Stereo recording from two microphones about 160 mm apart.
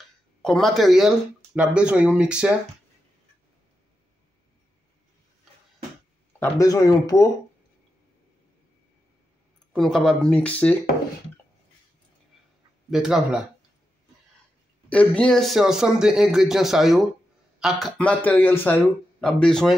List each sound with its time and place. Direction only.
0.4 s speech: 5° left (ahead or behind)
6.4 s speech: 20° left (ahead or behind)
9.7 s speech: 5° left (ahead or behind)
12.9 s speech: 5° right (ahead or behind)
14.9 s speech: 5° left (ahead or behind)